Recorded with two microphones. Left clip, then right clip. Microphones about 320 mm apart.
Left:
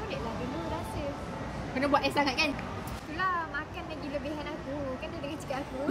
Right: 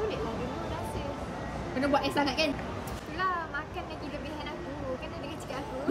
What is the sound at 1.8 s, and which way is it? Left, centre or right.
Speech, left.